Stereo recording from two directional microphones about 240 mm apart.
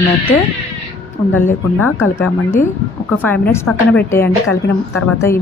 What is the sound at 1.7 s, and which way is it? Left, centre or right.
A woman's voice, centre.